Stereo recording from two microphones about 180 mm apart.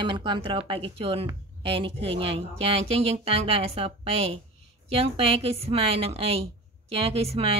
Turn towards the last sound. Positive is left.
turn(degrees=-35)  # may be behind; listen again after turning